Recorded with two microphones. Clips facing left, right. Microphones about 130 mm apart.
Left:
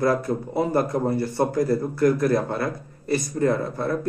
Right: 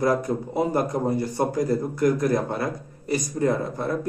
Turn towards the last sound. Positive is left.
turn(degrees=-20)  # may be behind; listen again after turning